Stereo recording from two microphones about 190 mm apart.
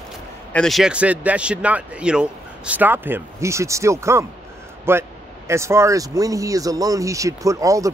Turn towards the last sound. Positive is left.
turn(degrees=-15)  # may be behind; listen again after turning